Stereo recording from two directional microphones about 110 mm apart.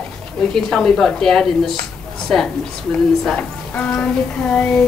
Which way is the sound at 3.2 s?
5° left (ahead or behind).